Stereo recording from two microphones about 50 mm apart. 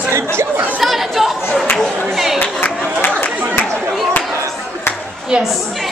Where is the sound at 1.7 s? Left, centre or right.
Centre.